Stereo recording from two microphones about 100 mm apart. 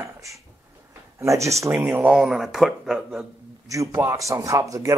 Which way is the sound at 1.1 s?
30° right (ahead or behind).